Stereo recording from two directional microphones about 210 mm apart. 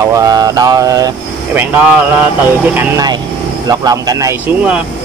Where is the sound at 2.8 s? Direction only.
15° right (ahead or behind).